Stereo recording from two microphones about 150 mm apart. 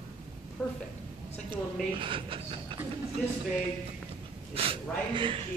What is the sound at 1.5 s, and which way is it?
Speech, 35° right (ahead or behind).